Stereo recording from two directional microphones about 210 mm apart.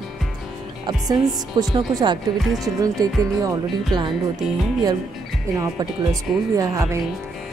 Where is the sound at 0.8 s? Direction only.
20° right (ahead or behind).